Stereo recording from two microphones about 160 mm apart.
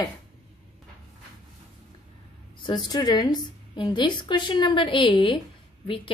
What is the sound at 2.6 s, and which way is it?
A woman's voice, 25° left (ahead or behind).